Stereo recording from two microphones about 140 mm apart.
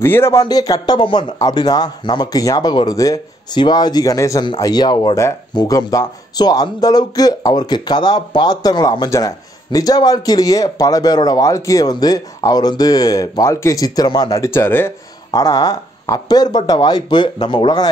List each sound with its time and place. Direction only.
0.0 s speech: 15° left (ahead or behind); by 17.8 s 30° left (ahead or behind)